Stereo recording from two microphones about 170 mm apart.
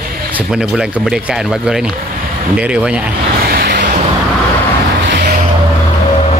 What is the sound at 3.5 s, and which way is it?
Vehicle, 70° right (ahead or behind).